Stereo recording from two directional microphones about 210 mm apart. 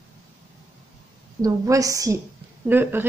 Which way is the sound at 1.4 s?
15° right (ahead or behind).